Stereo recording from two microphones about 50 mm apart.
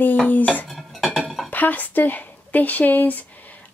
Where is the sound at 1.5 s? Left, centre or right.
Left.